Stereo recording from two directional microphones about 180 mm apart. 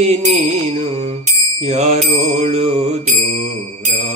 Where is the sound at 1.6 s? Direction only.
35° right (ahead or behind).